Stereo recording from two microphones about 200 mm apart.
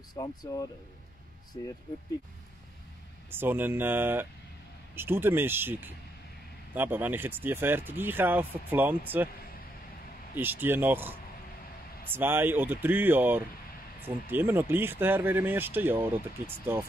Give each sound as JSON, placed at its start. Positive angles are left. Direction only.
{"t": 0.1, "sound": "speech", "side_deg": 20}
{"t": 3.3, "sound": "speech", "side_deg": -10}
{"t": 10.3, "sound": "speech", "side_deg": -10}